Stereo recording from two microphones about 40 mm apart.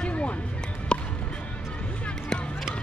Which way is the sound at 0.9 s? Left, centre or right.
Left.